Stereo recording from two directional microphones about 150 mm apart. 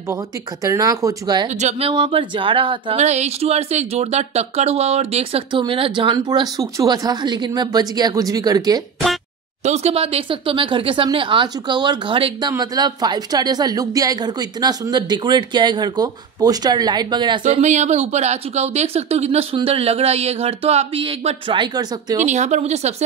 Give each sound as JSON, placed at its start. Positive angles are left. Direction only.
{"t": 0.7, "sound": "speech", "side_deg": -20}
{"t": 1.6, "sound": "speech", "side_deg": -50}
{"t": 1.9, "sound": "speech", "side_deg": -35}
{"t": 3.0, "sound": "speech", "side_deg": -50}
{"t": 5.5, "sound": "speech", "side_deg": -35}
{"t": 9.7, "sound": "speech", "side_deg": -45}
{"t": 17.5, "sound": "speech", "side_deg": -50}
{"t": 22.2, "sound": "speech", "side_deg": -50}